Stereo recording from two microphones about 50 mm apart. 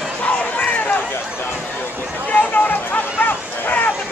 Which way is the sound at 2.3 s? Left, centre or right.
Left.